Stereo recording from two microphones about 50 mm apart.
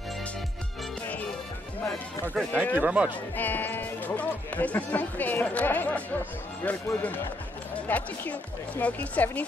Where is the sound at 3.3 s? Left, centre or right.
Left.